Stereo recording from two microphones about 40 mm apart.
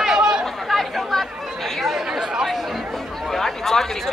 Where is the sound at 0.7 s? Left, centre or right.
Centre.